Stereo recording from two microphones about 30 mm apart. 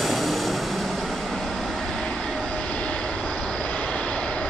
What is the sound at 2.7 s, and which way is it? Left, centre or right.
Vehicle, left.